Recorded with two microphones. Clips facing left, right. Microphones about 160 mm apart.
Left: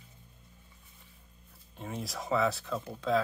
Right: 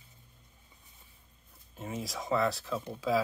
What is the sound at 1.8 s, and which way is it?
Speech, centre (ahead or behind).